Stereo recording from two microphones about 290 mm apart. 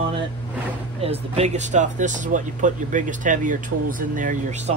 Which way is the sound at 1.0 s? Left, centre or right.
Right.